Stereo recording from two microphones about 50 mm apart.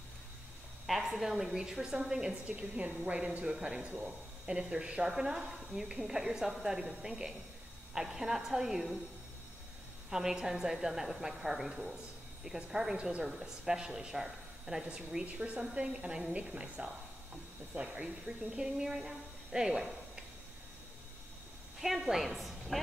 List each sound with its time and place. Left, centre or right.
0.8 s speech: centre
2.4 s speech: right
10.0 s speech: centre
12.9 s speech: right
13.2 s speech: centre
18.6 s a woman's voice: centre
21.8 s a woman's voice: centre